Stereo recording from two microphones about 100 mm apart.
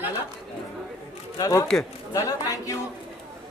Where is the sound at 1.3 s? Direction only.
35° left (ahead or behind).